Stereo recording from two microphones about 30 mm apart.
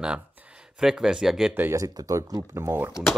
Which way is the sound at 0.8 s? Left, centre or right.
Right.